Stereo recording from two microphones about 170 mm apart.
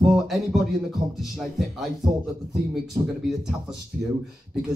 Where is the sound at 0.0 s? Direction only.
Centre (ahead or behind).